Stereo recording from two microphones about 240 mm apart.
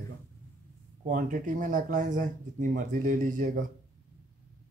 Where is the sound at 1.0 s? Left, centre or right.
Right.